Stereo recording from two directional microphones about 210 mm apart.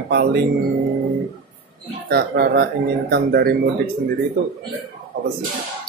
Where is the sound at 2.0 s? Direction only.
50° right (ahead or behind).